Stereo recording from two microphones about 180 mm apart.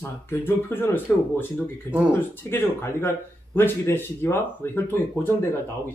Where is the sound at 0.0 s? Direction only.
10° left (ahead or behind).